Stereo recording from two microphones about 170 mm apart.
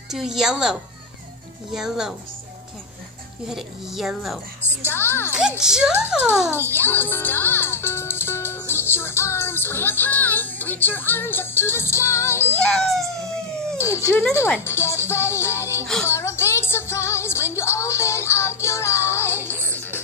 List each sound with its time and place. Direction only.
0.1 s speech: centre (ahead or behind)
3.4 s speech: centre (ahead or behind)
4.8 s speech: 15° left (ahead or behind)
5.4 s speech: 5° right (ahead or behind)
6.7 s music: 10° left (ahead or behind)
12.5 s speech: 5° left (ahead or behind)
13.7 s speech: 15° left (ahead or behind)
16.0 s music: 15° left (ahead or behind)